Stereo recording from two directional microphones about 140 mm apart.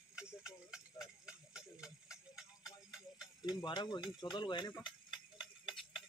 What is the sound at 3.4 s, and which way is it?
Speech, 30° left (ahead or behind).